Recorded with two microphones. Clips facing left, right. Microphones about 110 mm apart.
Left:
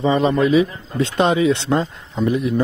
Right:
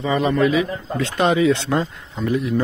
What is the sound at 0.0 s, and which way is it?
A man's voice, 25° left (ahead or behind).